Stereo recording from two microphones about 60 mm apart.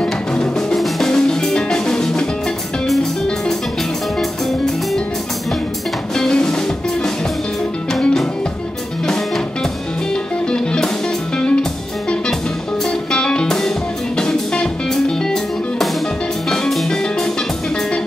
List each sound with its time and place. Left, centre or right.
0.0 s music: centre
4.2 s music: centre
6.1 s music: centre
13.1 s music: centre
16.4 s music: centre